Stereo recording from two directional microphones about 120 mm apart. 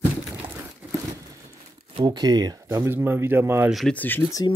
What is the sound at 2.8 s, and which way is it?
Speech, 20° right (ahead or behind).